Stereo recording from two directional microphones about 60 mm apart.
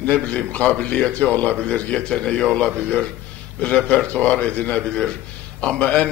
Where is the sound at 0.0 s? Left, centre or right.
Left.